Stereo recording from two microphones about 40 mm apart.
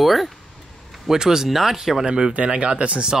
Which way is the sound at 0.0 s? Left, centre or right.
Centre.